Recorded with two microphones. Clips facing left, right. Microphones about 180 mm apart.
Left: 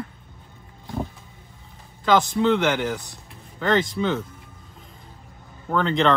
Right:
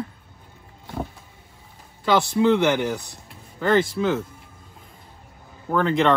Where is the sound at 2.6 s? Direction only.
15° right (ahead or behind).